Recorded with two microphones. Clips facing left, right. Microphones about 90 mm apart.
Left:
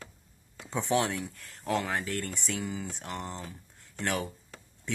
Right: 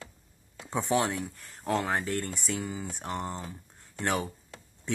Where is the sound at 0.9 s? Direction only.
10° right (ahead or behind).